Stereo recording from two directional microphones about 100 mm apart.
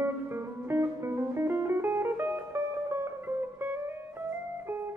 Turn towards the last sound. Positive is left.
turn(degrees=-25)  # may be behind; listen again after turning